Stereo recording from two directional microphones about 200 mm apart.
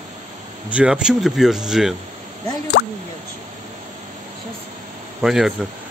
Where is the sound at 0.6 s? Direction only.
5° right (ahead or behind).